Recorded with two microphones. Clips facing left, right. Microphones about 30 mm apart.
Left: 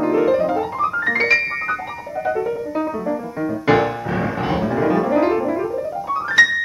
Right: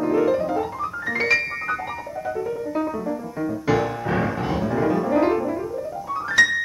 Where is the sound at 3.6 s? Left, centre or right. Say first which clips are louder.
Left 6 dB; left.